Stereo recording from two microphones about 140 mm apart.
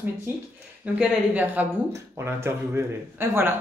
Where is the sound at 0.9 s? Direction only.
10° right (ahead or behind).